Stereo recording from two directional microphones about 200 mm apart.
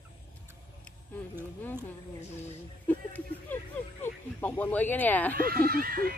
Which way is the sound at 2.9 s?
10° left (ahead or behind).